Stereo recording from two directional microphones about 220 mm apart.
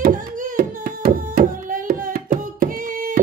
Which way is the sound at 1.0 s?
30° right (ahead or behind).